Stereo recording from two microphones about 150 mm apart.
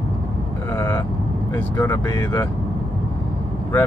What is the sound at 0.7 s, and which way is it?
Speech, 20° left (ahead or behind).